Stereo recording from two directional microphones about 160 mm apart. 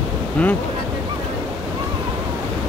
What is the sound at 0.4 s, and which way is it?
Speech, 5° left (ahead or behind).